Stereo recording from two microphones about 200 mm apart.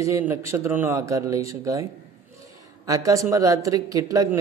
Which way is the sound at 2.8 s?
15° right (ahead or behind).